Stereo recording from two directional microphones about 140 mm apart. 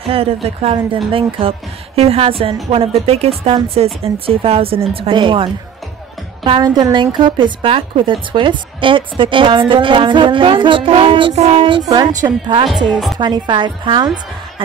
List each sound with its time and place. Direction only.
0.1 s a woman's voice: 45° right (ahead or behind)
12.6 s a woman's voice: 5° right (ahead or behind)
13.2 s a woman's voice: 35° right (ahead or behind)